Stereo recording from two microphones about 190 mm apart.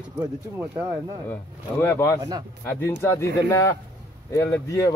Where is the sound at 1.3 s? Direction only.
10° left (ahead or behind).